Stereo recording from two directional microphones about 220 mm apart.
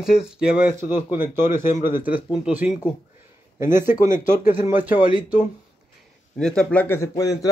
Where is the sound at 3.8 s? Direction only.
35° left (ahead or behind).